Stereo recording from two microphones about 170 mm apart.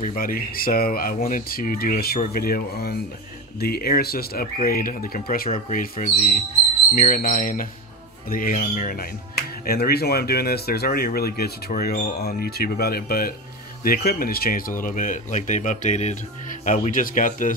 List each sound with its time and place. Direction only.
0.0 s speech: 55° left (ahead or behind)